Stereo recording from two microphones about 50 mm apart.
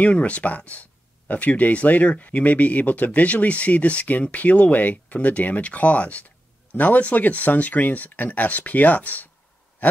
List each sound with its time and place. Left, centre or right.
0.0 s speech: left